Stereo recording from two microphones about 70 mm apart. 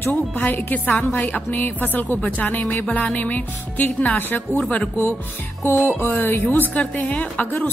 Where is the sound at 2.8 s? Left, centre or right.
Centre.